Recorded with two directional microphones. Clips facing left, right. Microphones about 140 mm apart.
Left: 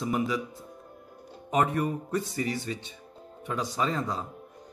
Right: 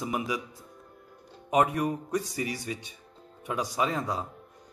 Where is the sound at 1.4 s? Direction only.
10° right (ahead or behind).